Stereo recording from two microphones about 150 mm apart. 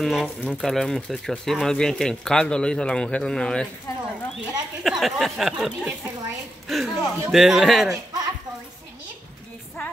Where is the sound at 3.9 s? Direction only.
25° left (ahead or behind).